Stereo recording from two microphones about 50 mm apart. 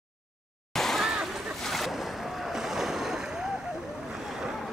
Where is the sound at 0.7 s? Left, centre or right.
Centre.